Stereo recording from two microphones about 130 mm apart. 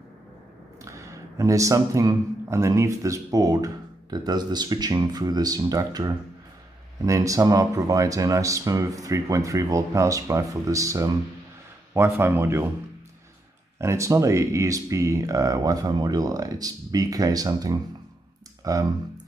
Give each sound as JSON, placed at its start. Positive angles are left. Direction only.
{"t": 0.8, "sound": "speech", "side_deg": -25}
{"t": 13.7, "sound": "speech", "side_deg": -20}